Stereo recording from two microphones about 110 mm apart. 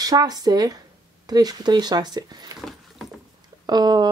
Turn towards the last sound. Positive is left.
turn(degrees=-40)  # may be behind; listen again after turning